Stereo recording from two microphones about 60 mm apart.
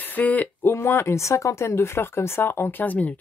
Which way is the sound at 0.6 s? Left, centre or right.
Left.